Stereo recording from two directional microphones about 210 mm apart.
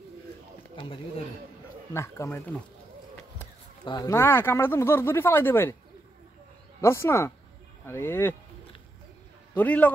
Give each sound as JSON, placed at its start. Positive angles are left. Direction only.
{"t": 2.0, "sound": "speech", "side_deg": 10}
{"t": 3.8, "sound": "speech", "side_deg": 20}
{"t": 6.8, "sound": "speech", "side_deg": 10}
{"t": 9.5, "sound": "a man's voice", "side_deg": 5}